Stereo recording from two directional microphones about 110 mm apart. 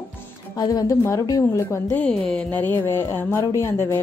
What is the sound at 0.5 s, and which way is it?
A woman's voice, 35° left (ahead or behind).